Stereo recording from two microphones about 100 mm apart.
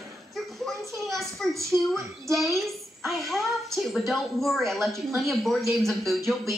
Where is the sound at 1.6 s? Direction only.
30° right (ahead or behind).